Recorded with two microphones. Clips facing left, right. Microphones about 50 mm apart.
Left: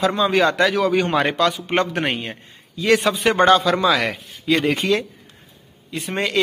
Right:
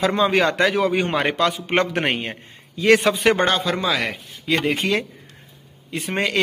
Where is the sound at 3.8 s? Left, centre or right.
Left.